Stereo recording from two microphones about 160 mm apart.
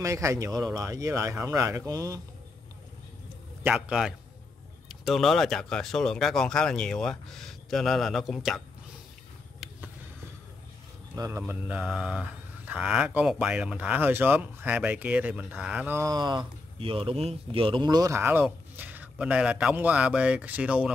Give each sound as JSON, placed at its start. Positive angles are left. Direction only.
{"t": 0.0, "sound": "speech", "side_deg": -20}
{"t": 3.6, "sound": "speech", "side_deg": -5}
{"t": 11.1, "sound": "speech", "side_deg": -15}